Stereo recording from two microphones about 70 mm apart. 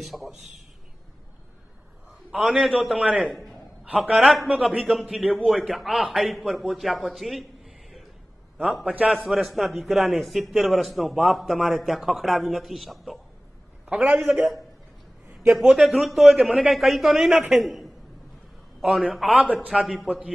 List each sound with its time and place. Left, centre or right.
0.0 s a man's voice: centre
2.5 s a man's voice: centre
4.5 s a man's voice: centre
8.8 s a man's voice: centre
9.1 s a man's voice: centre
13.8 s a man's voice: centre
14.3 s a man's voice: centre
20.1 s a man's voice: centre